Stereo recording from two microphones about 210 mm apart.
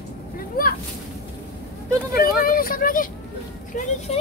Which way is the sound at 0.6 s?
45° left (ahead or behind).